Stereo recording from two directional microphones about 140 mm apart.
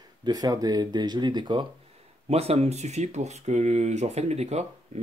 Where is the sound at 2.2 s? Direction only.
45° right (ahead or behind).